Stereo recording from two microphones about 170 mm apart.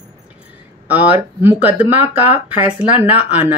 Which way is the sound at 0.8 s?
10° right (ahead or behind).